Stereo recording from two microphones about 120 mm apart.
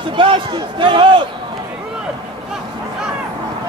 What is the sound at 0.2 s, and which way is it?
Speech, 45° right (ahead or behind).